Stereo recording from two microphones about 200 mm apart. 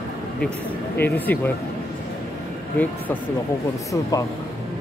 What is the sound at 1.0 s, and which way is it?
Speech, 10° left (ahead or behind).